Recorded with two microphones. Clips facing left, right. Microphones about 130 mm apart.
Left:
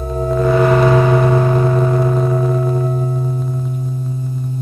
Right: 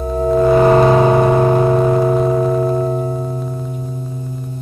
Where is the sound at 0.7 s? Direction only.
30° right (ahead or behind).